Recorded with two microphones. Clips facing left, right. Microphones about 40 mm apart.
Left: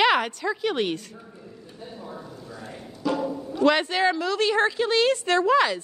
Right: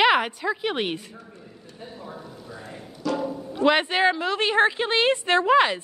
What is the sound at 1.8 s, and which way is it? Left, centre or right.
Speech, centre.